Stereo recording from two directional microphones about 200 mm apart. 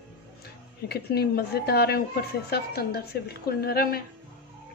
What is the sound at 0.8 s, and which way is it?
A woman's voice, 50° left (ahead or behind).